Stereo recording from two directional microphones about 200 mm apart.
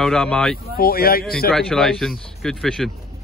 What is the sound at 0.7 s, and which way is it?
Speech, 50° left (ahead or behind).